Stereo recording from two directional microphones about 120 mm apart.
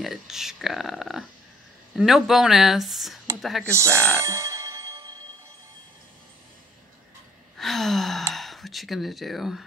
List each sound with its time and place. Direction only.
0.0 s speech: centre (ahead or behind)
3.7 s music: 25° right (ahead or behind)
7.5 s sigh: centre (ahead or behind)